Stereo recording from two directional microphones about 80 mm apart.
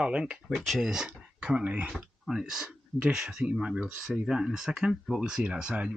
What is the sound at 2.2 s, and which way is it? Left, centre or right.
Speech, centre.